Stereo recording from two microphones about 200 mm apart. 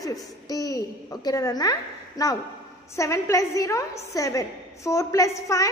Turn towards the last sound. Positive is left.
turn(degrees=15)  # may be behind; listen again after turning